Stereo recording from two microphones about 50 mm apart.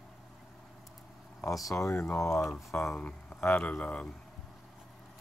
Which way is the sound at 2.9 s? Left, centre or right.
Left.